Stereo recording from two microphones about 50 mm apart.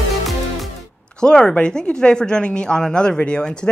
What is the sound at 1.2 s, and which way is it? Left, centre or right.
Speech, centre.